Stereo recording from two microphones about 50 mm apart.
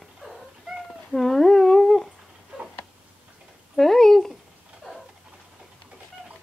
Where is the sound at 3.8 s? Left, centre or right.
Centre.